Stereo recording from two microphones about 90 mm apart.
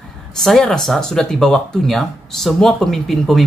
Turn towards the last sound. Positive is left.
turn(degrees=5)  # may be behind; listen again after turning